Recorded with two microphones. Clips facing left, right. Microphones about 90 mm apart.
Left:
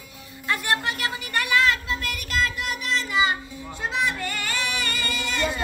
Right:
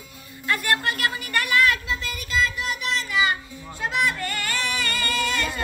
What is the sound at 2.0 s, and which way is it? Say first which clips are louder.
Music: right 2 dB; 60° left (ahead or behind).